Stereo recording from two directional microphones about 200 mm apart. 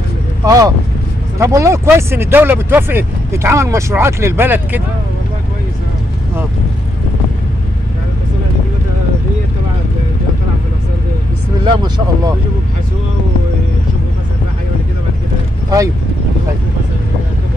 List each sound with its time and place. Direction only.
0.5 s speech: 15° right (ahead or behind)
11.6 s speech: 20° right (ahead or behind)